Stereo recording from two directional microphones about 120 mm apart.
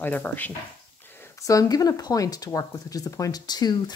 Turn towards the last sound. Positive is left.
turn(degrees=35)  # may be behind; listen again after turning